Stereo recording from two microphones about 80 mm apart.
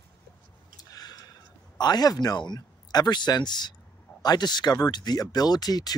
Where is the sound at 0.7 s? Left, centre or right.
Left.